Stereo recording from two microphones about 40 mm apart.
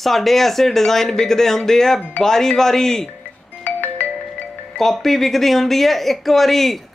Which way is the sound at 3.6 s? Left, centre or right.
Left.